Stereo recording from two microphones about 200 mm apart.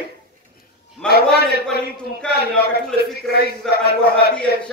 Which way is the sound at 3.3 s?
55° left (ahead or behind).